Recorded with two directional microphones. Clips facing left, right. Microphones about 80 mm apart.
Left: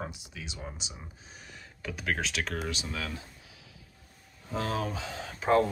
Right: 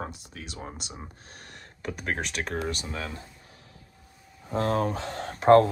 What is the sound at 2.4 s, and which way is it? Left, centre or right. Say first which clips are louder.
Speech: right 3 dB; right.